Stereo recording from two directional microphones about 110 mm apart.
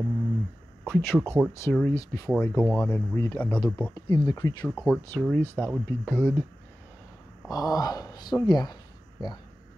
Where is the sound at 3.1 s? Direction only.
25° left (ahead or behind).